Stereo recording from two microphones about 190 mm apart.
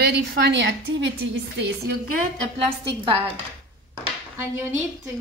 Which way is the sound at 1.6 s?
55° right (ahead or behind).